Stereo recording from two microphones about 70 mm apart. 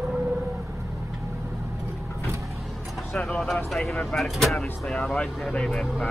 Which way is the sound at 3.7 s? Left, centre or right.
Centre.